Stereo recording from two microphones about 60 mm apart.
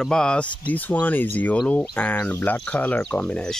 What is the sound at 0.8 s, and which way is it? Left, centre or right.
Speech, left.